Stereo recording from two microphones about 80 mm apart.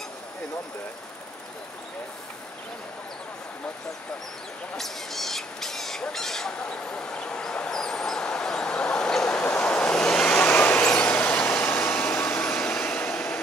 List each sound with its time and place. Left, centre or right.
4.7 s speech: centre
6.6 s vehicle: centre
12.7 s train: left